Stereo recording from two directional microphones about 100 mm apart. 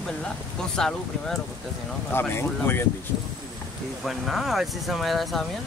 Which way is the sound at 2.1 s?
20° left (ahead or behind).